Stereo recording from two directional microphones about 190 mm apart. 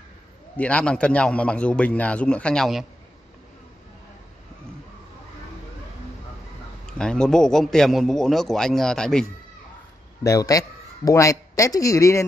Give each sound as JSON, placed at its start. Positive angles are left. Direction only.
{"t": 0.6, "sound": "a man's voice", "side_deg": 5}
{"t": 6.9, "sound": "a man's voice", "side_deg": 5}
{"t": 10.2, "sound": "a man's voice", "side_deg": 15}